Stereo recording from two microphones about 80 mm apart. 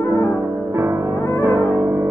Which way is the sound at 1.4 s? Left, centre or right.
Right.